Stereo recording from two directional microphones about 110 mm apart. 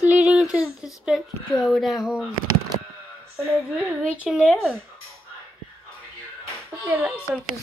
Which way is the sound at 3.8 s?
10° right (ahead or behind).